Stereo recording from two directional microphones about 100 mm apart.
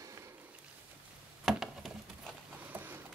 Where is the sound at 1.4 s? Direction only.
5° right (ahead or behind).